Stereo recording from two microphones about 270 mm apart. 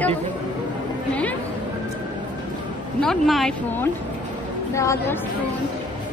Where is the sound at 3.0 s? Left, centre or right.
Centre.